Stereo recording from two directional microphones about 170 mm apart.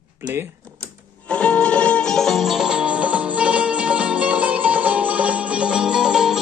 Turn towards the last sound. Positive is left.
turn(degrees=-5)  # may be behind; listen again after turning